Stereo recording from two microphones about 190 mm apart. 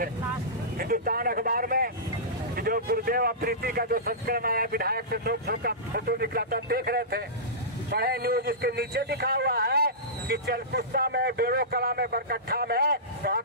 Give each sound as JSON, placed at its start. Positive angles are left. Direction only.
{"t": 0.7, "sound": "a man's voice", "side_deg": -50}